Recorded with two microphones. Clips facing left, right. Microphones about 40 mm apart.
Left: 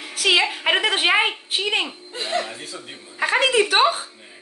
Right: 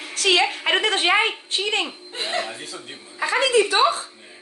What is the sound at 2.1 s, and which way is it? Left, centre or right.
Speech, right.